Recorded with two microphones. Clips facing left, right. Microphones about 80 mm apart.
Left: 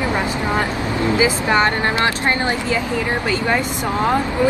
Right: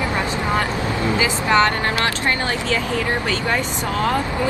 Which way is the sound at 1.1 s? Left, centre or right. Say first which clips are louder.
Left 1 dB; centre.